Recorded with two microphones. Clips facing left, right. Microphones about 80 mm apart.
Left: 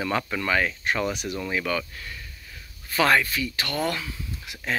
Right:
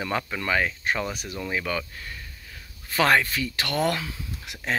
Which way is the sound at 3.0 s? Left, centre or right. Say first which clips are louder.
Even; right.